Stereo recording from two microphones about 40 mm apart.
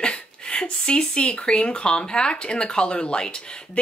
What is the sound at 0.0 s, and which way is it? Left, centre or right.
Speech, left.